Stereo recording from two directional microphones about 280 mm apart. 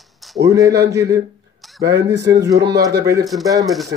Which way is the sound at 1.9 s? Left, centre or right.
Right.